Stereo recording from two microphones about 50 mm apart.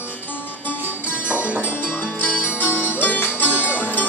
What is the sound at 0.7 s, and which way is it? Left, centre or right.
Music, left.